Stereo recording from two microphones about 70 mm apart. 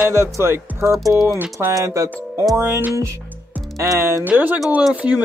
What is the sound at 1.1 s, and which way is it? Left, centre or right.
Speech, right.